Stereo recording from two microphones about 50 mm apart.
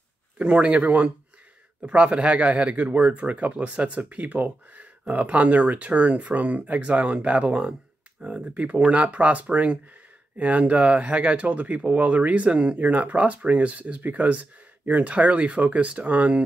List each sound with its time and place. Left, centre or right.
0.4 s a man's voice: right
8.5 s a man's voice: right